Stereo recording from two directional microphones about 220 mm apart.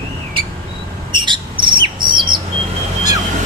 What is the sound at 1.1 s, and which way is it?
Bird, 20° right (ahead or behind).